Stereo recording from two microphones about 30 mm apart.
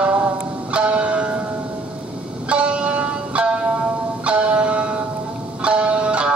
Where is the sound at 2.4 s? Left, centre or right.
Right.